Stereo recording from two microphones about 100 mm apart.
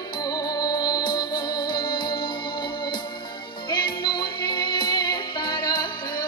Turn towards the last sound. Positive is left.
turn(degrees=50)  # may be behind; listen again after turning